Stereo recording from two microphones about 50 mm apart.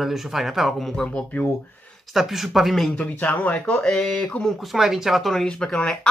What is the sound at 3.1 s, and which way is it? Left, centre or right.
Speech, left.